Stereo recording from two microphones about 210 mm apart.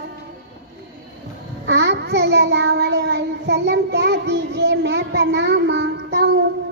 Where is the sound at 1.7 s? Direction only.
55° right (ahead or behind).